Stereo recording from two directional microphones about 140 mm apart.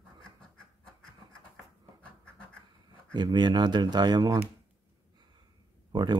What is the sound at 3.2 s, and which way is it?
Speech, 30° right (ahead or behind).